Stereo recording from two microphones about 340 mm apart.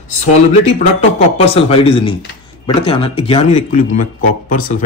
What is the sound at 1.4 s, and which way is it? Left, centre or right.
A man's voice, centre.